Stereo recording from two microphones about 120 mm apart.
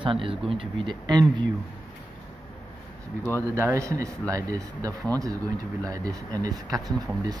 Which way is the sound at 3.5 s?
25° right (ahead or behind).